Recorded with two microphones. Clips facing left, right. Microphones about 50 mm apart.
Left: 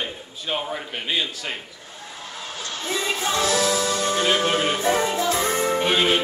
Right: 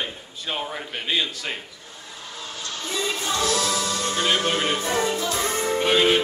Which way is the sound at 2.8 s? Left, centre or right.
Left.